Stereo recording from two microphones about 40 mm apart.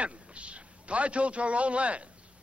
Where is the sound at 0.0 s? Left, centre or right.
Right.